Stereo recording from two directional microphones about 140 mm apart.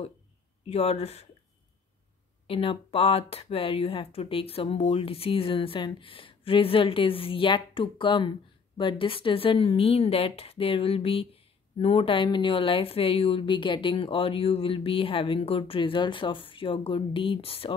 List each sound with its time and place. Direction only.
0.7 s speech: 45° left (ahead or behind)
2.4 s speech: 40° left (ahead or behind)